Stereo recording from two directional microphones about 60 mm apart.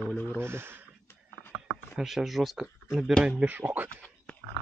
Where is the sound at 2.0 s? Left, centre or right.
Centre.